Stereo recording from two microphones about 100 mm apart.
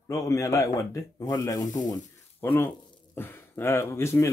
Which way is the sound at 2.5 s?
25° left (ahead or behind).